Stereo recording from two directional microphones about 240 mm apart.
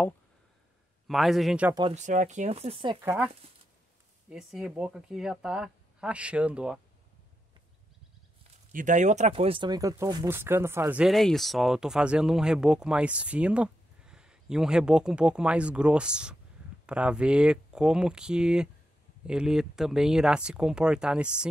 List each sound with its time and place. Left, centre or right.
1.0 s speech: centre
1.8 s speech: right
3.0 s speech: centre
4.3 s speech: centre
8.7 s speech: right; by 21.5 s centre